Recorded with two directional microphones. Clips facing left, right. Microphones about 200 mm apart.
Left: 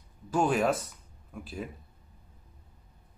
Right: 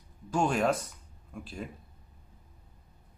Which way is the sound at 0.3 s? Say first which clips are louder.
Left 1 dB; 5° left (ahead or behind).